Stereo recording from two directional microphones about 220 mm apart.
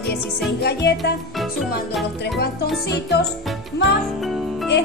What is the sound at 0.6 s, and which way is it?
Music, 50° left (ahead or behind).